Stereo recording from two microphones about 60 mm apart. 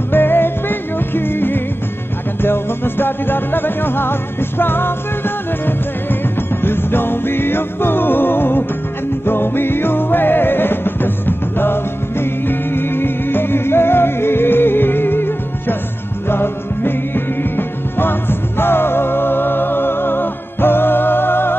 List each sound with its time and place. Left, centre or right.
0.1 s music: left